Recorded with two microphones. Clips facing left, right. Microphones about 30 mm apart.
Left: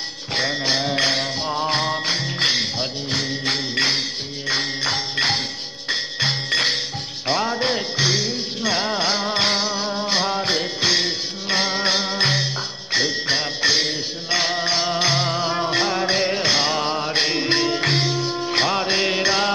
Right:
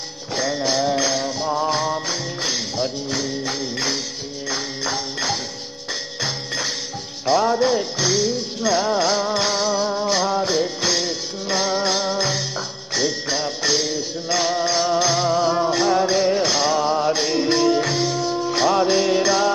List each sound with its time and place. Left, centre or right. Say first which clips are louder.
0.3 s music: even; left
6.5 s music: left 5 dB; left
7.2 s music: right 4 dB; left
12.2 s music: left 2 dB; left
12.5 s music: left 2 dB; left
17.8 s music: left 1 dB; left
18.1 s music: right 1 dB; left